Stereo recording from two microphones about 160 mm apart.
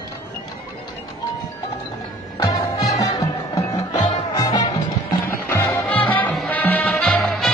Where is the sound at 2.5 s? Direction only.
25° left (ahead or behind); by 7.4 s centre (ahead or behind).